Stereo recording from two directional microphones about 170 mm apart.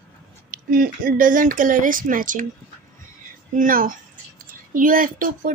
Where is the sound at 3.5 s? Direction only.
55° right (ahead or behind).